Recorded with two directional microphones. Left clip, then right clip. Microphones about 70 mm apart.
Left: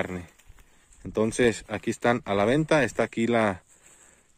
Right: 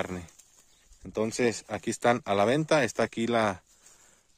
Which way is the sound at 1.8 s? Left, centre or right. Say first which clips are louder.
Even; right.